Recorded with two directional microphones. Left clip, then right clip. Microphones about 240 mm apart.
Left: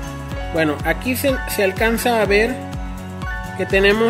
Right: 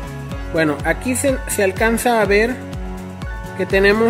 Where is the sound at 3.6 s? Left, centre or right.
Centre.